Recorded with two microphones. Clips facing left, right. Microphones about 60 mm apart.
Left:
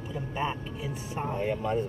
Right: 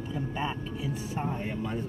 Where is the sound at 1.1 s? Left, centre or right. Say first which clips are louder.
Left 2 dB; centre.